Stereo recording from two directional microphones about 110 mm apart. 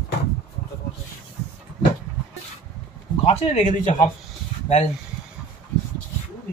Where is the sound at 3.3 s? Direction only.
85° left.